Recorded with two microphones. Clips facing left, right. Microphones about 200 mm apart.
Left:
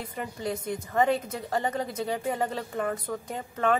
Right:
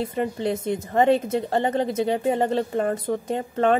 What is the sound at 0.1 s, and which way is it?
A woman's voice, 25° right (ahead or behind).